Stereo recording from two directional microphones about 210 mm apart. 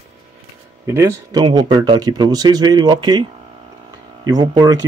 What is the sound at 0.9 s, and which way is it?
Speech, 15° right (ahead or behind).